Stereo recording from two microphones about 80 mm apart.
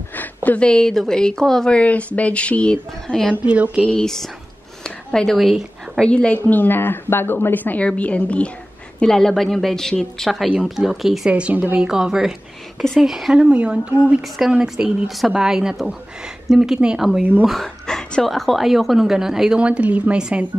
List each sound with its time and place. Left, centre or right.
0.1 s a woman's voice: left; by 3.3 s centre
3.4 s speech: centre
3.8 s a woman's voice: centre
4.8 s a sound: centre
6.0 s speech: centre
9.0 s a woman's voice: centre
10.5 s speech: centre
11.3 s a woman's voice: centre
17.5 s a woman's voice: centre